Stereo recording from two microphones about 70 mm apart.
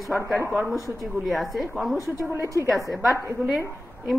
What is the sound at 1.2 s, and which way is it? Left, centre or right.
Speech, centre.